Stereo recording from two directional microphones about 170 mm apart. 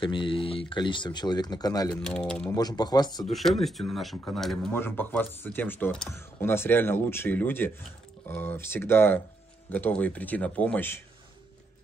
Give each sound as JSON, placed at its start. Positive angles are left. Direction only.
{"t": 0.0, "sound": "speech", "side_deg": 30}
{"t": 2.0, "sound": "speech", "side_deg": 5}
{"t": 2.5, "sound": "speech", "side_deg": 25}
{"t": 3.3, "sound": "speech", "side_deg": 0}